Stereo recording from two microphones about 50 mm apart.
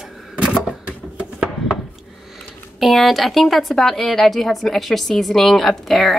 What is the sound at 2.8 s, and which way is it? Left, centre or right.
A woman's voice, centre.